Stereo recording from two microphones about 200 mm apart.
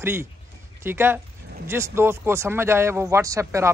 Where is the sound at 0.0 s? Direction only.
10° right (ahead or behind).